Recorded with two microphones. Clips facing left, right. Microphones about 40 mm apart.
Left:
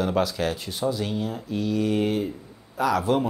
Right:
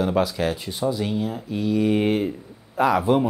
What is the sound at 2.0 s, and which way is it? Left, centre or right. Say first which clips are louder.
Speech: right 3 dB; right.